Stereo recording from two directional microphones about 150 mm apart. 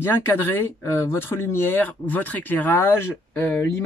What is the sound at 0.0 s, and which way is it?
Speech, 15° left (ahead or behind).